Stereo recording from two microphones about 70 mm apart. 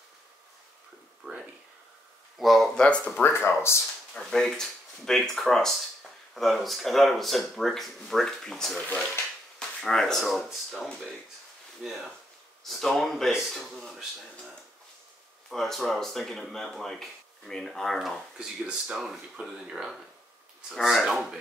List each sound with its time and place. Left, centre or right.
1.2 s speech: centre
2.3 s speech: centre
3.2 s speech: left
3.4 s speech: left
4.1 s speech: centre
15.5 s speech: centre